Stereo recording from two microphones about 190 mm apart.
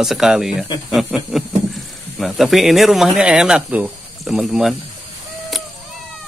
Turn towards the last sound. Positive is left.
turn(degrees=0)  # may be behind; listen again after turning